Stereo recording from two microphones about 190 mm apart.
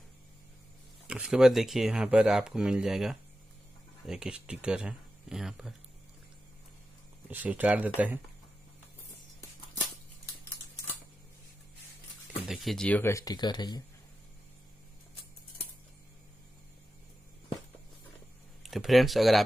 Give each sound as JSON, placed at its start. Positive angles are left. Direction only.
{"t": 1.0, "sound": "speech", "side_deg": -5}
{"t": 7.2, "sound": "speech", "side_deg": -10}
{"t": 12.4, "sound": "speech", "side_deg": 0}
{"t": 18.6, "sound": "speech", "side_deg": 0}